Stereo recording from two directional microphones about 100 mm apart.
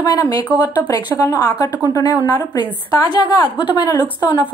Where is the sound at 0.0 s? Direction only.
40° left (ahead or behind).